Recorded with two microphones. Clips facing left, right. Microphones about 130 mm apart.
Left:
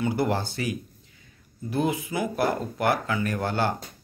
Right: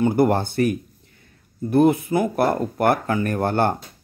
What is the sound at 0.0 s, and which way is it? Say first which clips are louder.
Speech: right 7 dB; 50° right (ahead or behind).